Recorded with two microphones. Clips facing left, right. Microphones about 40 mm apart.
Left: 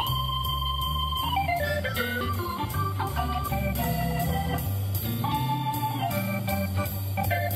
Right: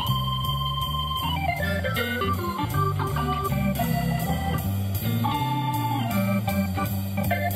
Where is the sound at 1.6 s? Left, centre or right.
Centre.